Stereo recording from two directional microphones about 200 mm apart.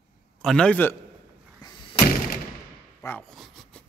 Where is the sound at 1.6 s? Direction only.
25° left (ahead or behind).